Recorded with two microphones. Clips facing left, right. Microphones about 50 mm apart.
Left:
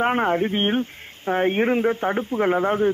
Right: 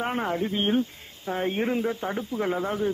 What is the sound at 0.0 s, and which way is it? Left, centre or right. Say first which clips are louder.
A man's voice: left 7 dB; left.